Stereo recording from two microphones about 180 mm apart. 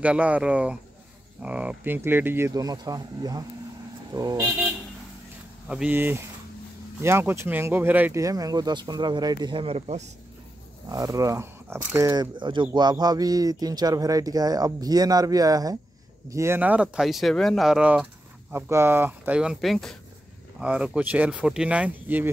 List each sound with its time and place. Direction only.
0.0 s a man's voice: 5° right (ahead or behind)
5.7 s a man's voice: 5° right (ahead or behind); by 10.0 s 35° right (ahead or behind)
10.9 s a man's voice: 20° right (ahead or behind)